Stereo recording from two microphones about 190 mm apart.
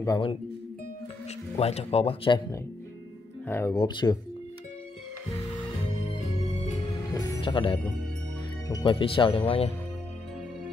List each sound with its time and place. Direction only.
0.0 s speech: 25° left (ahead or behind)
1.6 s speech: 35° left (ahead or behind)
3.4 s speech: 15° left (ahead or behind)
6.4 s music: 35° left (ahead or behind)
8.6 s speech: 20° left (ahead or behind)